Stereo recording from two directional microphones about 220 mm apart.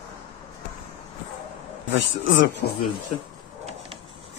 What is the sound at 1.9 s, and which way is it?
Speech, 55° left (ahead or behind).